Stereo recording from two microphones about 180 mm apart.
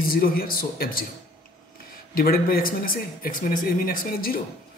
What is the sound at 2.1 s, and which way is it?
Speech, 55° left (ahead or behind).